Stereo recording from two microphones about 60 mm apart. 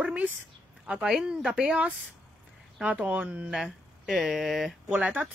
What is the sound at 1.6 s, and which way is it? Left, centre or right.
Speech, centre.